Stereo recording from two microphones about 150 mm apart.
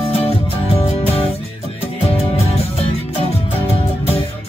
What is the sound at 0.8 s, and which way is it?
Music, 40° left (ahead or behind).